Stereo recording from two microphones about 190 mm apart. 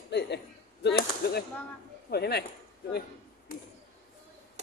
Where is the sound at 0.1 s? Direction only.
60° left (ahead or behind).